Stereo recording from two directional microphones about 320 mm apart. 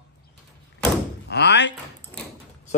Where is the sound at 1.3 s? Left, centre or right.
Left.